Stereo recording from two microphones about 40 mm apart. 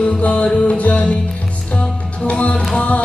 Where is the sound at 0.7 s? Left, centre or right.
Left.